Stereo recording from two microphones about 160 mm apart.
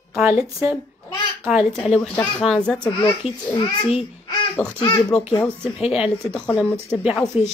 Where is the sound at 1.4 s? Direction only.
Centre (ahead or behind).